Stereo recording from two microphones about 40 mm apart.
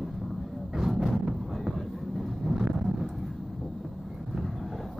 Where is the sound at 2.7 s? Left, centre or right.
Centre.